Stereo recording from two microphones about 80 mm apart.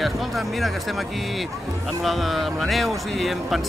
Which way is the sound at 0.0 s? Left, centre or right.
Centre.